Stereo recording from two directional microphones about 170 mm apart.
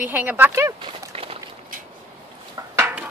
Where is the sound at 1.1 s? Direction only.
35° right (ahead or behind).